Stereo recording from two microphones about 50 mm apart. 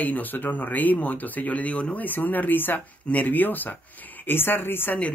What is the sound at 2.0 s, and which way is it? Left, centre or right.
Speech, left.